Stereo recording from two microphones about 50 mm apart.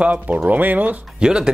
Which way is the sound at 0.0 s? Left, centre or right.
Right.